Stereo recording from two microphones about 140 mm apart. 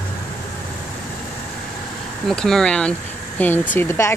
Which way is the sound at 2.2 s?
5° left (ahead or behind).